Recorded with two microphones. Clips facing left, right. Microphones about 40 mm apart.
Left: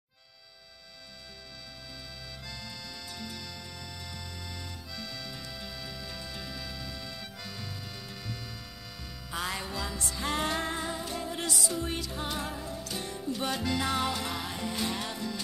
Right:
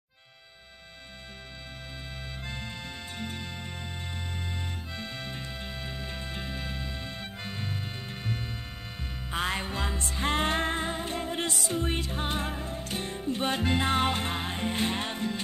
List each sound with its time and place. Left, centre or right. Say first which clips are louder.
2.4 s music: right 4 dB; right